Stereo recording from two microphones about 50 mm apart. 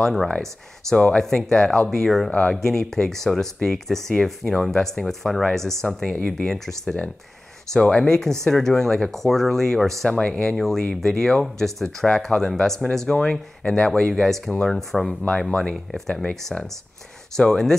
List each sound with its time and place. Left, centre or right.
0.0 s speech: centre
7.7 s speech: centre
10.0 s speech: centre
10.5 s speech: centre
17.4 s speech: centre